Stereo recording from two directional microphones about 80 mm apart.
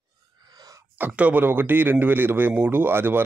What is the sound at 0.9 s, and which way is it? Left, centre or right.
A man's voice, right.